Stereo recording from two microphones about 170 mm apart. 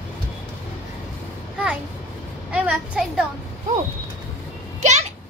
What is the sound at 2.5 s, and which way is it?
Speech, 5° right (ahead or behind).